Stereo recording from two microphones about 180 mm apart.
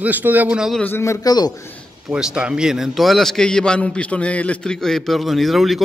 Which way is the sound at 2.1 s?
5° right (ahead or behind).